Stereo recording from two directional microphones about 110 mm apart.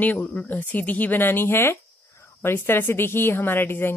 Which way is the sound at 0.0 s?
15° left (ahead or behind).